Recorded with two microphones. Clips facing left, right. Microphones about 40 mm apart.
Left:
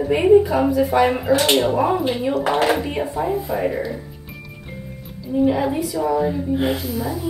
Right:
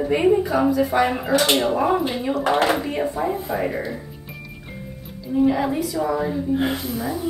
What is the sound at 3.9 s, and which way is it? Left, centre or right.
Music, centre.